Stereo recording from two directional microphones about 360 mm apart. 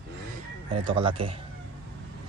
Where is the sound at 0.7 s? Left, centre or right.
Centre.